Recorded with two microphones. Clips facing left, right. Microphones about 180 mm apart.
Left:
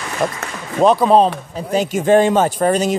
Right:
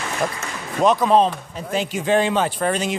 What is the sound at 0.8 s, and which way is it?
Speech, 35° left (ahead or behind).